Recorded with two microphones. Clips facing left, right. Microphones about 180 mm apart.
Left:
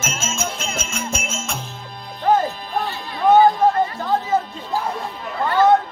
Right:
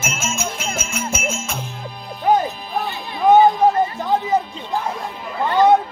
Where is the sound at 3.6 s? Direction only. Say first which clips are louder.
Right 1 dB; 20° right (ahead or behind).